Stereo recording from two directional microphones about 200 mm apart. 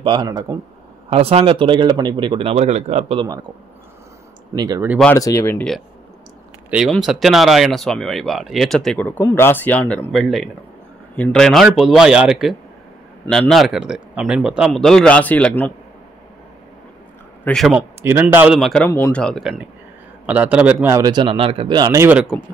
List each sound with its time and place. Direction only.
0.0 s speech: 20° right (ahead or behind)
1.1 s speech: 30° right (ahead or behind)
4.6 s speech: 20° right (ahead or behind)
5.0 s speech: 15° left (ahead or behind)
6.7 s speech: 5° right (ahead or behind)
17.5 s speech: centre (ahead or behind)
18.9 s a man's voice: 10° left (ahead or behind); by 22.3 s 10° right (ahead or behind)